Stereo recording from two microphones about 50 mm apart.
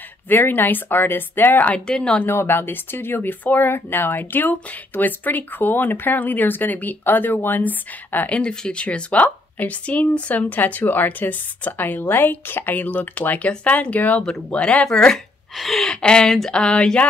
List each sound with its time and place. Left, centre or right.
0.3 s speech: left
1.9 s speech: centre
2.2 s speech: left
8.4 s speech: left
15.5 s gasp: centre
15.9 s speech: centre
16.3 s speech: centre